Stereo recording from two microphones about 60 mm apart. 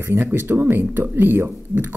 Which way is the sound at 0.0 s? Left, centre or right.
Right.